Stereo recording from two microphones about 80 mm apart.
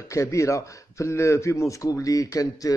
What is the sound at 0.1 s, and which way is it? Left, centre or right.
A man's voice, left.